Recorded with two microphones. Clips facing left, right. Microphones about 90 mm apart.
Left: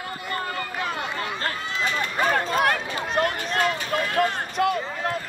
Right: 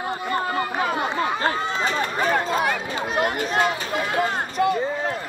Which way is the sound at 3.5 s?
20° right (ahead or behind).